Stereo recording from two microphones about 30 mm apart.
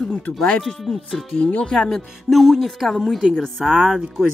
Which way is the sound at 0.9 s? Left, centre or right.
Centre.